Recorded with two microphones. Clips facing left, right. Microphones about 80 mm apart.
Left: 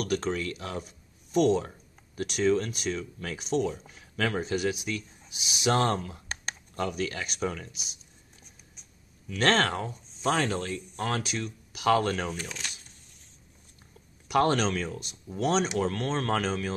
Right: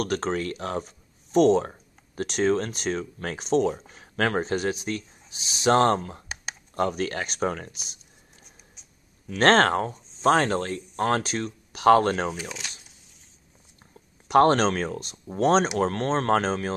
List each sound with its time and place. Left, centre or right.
0.0 s speech: right
9.3 s speech: right
12.3 s speech: centre
14.2 s speech: right